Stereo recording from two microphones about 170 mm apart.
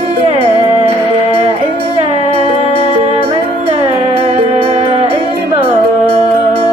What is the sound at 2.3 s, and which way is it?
Music, 30° right (ahead or behind).